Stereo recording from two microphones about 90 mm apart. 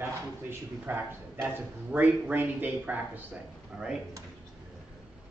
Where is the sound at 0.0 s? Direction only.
25° right (ahead or behind).